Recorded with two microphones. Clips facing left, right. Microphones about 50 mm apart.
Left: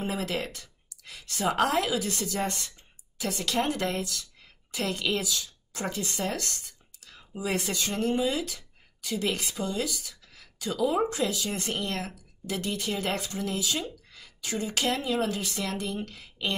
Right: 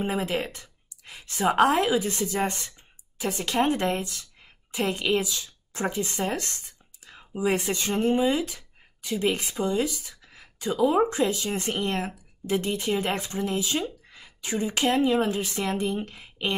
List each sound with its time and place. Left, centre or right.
0.0 s a woman's voice: right